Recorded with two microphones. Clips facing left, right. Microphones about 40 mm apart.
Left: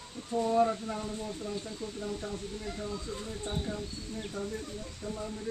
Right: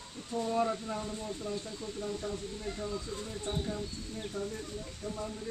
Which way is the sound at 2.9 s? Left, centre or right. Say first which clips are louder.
Even; left.